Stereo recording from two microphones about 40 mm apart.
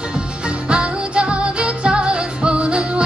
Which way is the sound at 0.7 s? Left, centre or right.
Right.